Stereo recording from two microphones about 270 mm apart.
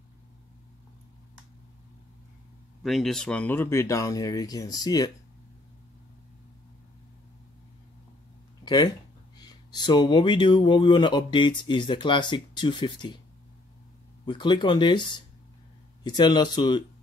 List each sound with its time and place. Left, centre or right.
2.8 s speech: centre
8.6 s speech: centre
14.2 s speech: centre